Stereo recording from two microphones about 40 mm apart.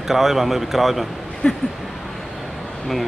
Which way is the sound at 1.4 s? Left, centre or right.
Left.